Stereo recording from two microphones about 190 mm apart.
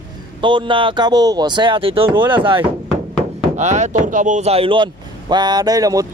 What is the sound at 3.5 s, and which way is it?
Speech, 40° right (ahead or behind).